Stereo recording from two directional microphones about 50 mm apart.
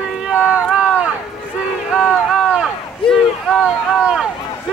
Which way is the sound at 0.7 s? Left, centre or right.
Right.